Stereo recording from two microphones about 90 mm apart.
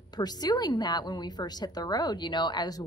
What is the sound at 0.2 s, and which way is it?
A woman's voice, 50° left (ahead or behind).